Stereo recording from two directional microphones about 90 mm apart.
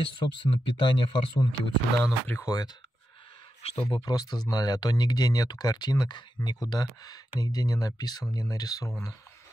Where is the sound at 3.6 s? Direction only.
90° left.